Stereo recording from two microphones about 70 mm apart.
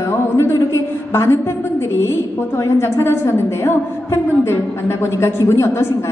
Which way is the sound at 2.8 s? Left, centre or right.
Left.